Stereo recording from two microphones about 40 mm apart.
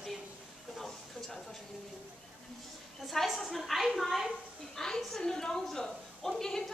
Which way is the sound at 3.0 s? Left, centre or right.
Centre.